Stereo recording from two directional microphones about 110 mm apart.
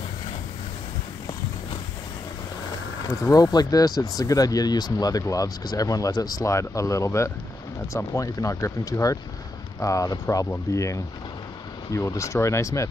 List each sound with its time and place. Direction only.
3.5 s speech: 35° left (ahead or behind)